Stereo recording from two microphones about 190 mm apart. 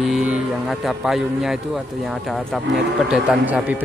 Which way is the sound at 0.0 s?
Centre (ahead or behind).